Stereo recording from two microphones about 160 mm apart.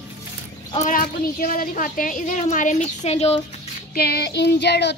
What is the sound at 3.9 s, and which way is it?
Child singing, 75° left (ahead or behind).